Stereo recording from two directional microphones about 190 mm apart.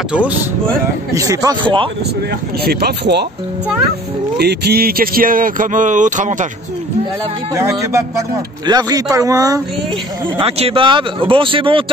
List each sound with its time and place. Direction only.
1.1 s speech: 15° right (ahead or behind)
2.6 s speech: 55° right (ahead or behind)
4.4 s speech: 55° right (ahead or behind); by 6.3 s 40° right (ahead or behind)
7.5 s speech: 15° right (ahead or behind)
10.4 s speech: 30° right (ahead or behind)